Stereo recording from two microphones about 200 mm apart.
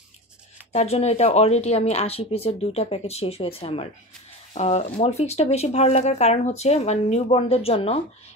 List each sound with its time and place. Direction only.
0.7 s speech: 35° left (ahead or behind)